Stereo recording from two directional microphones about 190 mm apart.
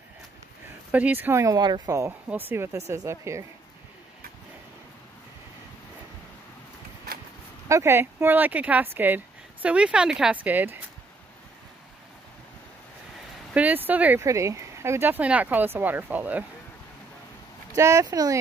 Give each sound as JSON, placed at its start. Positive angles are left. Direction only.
{"t": 0.9, "sound": "speech", "side_deg": -10}
{"t": 7.6, "sound": "speech", "side_deg": -15}
{"t": 13.5, "sound": "speech", "side_deg": -10}
{"t": 17.7, "sound": "speech", "side_deg": -15}